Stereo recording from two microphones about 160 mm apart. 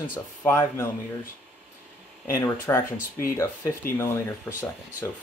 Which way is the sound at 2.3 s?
15° left (ahead or behind).